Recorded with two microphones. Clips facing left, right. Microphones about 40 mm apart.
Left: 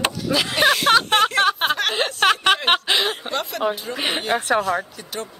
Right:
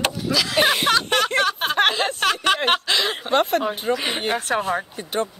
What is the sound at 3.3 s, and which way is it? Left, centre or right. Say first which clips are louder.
Speech: right 7 dB; right.